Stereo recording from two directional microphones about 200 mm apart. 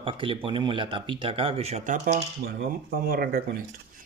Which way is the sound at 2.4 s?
50° right (ahead or behind).